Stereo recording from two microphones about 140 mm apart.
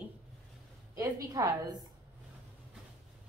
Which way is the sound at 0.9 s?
25° right (ahead or behind).